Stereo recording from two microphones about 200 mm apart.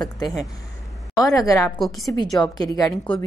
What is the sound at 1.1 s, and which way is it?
Speech, 20° left (ahead or behind).